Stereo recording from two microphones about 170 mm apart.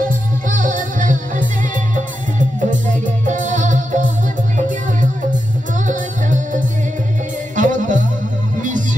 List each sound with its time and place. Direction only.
0.0 s music: 50° right (ahead or behind)
5.9 s music: 50° right (ahead or behind)